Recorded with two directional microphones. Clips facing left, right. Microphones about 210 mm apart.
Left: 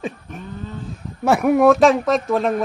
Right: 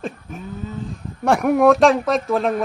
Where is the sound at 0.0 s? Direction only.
Centre (ahead or behind).